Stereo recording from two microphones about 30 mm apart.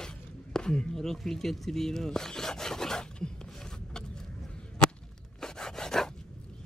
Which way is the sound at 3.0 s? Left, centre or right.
Left.